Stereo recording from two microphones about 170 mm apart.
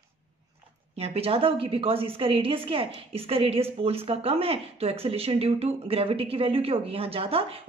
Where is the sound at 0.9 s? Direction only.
35° right (ahead or behind).